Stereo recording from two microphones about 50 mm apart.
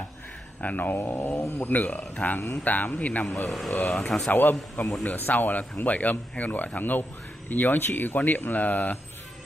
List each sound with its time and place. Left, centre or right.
0.6 s speech: left
1.6 s speech: left
3.4 s speech: centre
4.3 s speech: left